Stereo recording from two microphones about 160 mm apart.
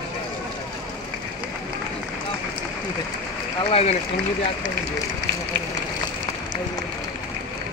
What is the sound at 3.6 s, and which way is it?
Speech, 40° left (ahead or behind).